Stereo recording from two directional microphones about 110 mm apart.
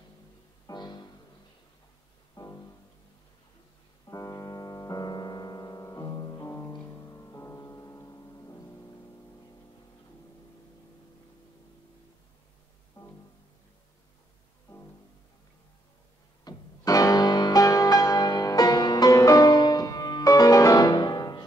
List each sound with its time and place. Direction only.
0.7 s music: 40° left (ahead or behind)
2.3 s music: 30° left (ahead or behind)
4.1 s piano: 30° left (ahead or behind)
6.8 s music: 25° left (ahead or behind)
13.0 s music: 20° left (ahead or behind)
16.4 s music: 30° left (ahead or behind)